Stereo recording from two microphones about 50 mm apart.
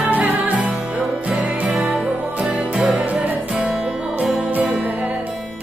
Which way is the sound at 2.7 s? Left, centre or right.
Centre.